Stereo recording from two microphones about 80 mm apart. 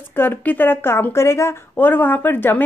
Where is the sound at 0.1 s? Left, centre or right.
Left.